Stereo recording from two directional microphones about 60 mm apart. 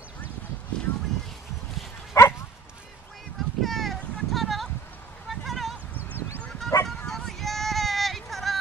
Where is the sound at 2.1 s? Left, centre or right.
Left.